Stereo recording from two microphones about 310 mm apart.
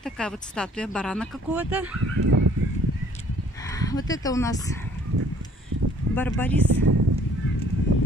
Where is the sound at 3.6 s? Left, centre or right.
Centre.